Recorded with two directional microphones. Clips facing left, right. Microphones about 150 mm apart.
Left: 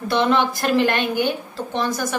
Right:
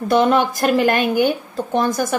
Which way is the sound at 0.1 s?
45° right (ahead or behind).